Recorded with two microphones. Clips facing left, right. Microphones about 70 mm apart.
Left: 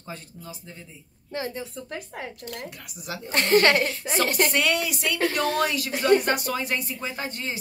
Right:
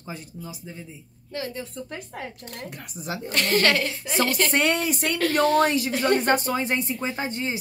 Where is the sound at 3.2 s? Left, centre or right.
Left.